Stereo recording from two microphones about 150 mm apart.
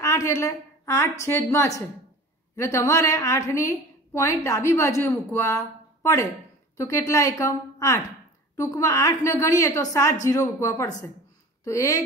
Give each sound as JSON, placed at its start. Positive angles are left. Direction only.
{"t": 0.0, "sound": "a woman's voice", "side_deg": 20}